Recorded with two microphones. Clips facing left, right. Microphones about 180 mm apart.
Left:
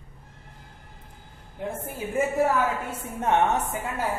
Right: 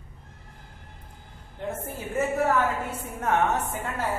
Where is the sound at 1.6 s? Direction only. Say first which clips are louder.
Even; 10° left (ahead or behind).